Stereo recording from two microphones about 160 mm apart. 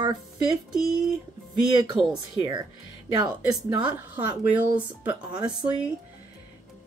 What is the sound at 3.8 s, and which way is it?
Speech, 10° right (ahead or behind).